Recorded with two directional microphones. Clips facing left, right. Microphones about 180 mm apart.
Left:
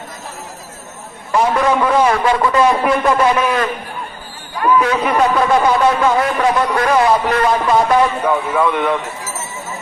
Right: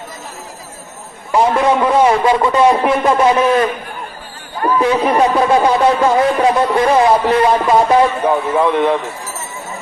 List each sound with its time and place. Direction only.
1.6 s a man's voice: 25° right (ahead or behind)
6.7 s a man's voice: 20° right (ahead or behind)